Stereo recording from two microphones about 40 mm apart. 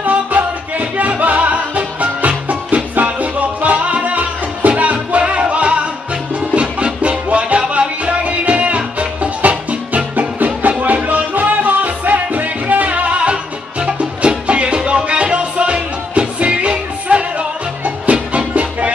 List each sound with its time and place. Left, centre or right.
0.0 s music: right